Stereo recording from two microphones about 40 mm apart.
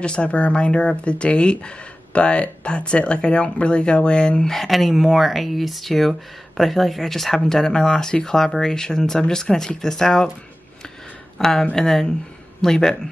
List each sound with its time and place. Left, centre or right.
0.0 s speech: left
4.6 s speech: centre
11.3 s speech: centre